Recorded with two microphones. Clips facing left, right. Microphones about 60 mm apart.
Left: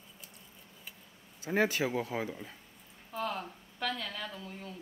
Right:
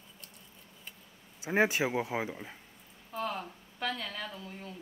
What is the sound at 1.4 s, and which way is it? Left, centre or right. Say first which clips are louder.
Speech: right 2 dB; centre.